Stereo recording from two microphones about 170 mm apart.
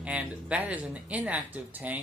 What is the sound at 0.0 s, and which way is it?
Speech, 5° right (ahead or behind).